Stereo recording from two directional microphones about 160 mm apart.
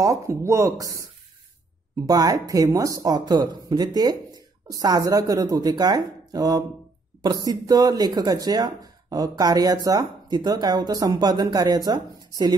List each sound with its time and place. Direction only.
0.0 s speech: 20° right (ahead or behind)
2.0 s speech: 25° right (ahead or behind)